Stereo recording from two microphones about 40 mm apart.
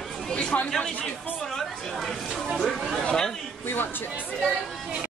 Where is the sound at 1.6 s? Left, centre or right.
Centre.